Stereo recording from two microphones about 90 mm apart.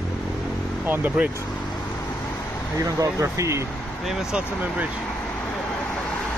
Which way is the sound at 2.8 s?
35° right (ahead or behind).